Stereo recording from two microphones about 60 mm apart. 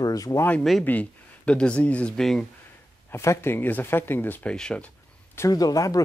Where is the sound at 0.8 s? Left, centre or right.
Left.